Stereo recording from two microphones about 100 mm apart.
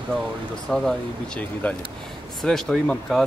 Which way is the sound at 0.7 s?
5° left (ahead or behind).